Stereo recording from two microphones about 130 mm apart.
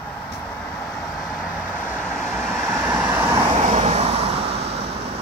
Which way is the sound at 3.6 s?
60° right (ahead or behind).